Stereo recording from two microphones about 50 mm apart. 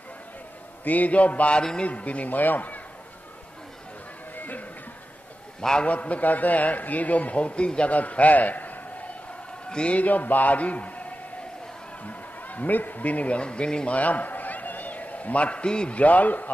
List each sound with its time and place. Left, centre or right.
0.8 s a man's voice: left
1.6 s a man's voice: centre
1.9 s a man's voice: left
4.4 s music: left
5.6 s a man's voice: centre
5.9 s a man's voice: left
9.7 s a man's voice: centre
9.9 s a man's voice: left
13.9 s a sound: left
16.0 s a man's voice: left